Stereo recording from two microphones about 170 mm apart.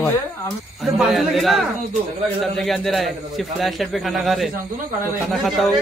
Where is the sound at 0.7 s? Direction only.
Centre (ahead or behind).